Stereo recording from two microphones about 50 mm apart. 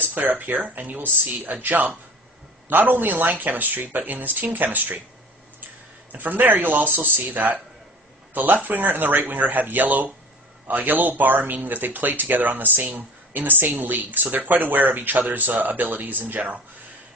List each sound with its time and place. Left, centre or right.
0.0 s speech: right
6.1 s speech: right
8.6 s speech: right